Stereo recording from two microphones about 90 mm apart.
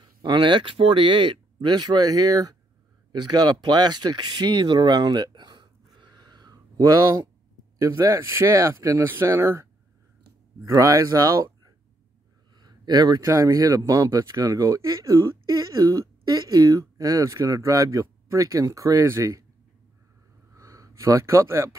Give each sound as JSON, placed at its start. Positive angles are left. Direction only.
{"t": 0.2, "sound": "speech", "side_deg": -60}
{"t": 10.7, "sound": "speech", "side_deg": -35}
{"t": 12.5, "sound": "a sound", "side_deg": -50}
{"t": 13.2, "sound": "speech", "side_deg": -35}
{"t": 20.5, "sound": "gasp", "side_deg": -35}